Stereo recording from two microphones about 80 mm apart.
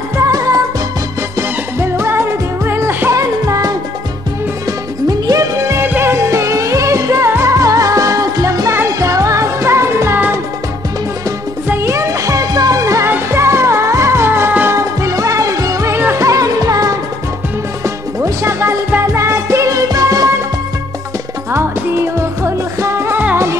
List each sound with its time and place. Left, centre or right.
0.2 s music: right
1.8 s music: right
3.1 s music: right
5.0 s music: right
5.9 s music: right
6.1 s music: right
11.8 s music: right
17.8 s music: right
21.5 s music: right